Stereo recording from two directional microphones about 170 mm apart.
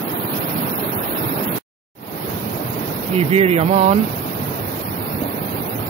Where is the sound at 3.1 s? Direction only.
35° right (ahead or behind).